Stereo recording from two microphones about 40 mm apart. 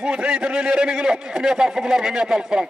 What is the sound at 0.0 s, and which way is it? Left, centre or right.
Speech, right.